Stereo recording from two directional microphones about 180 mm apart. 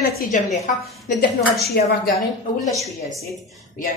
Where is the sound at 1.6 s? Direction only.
60° left (ahead or behind).